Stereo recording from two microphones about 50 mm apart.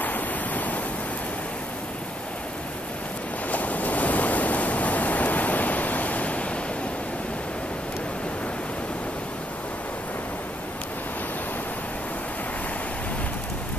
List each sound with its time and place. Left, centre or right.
0.0 s waves: left
3.5 s waves: left